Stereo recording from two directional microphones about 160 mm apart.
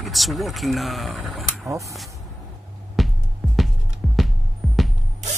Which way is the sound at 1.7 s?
20° right (ahead or behind).